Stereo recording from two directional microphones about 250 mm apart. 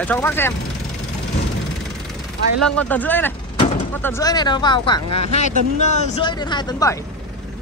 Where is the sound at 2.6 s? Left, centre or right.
Centre.